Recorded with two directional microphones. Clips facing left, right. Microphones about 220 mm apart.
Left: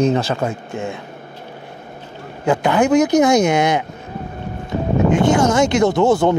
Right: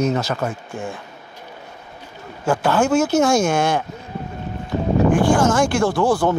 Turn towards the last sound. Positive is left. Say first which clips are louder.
# left 3 dB
turn(degrees=25)  # may be behind; listen again after turning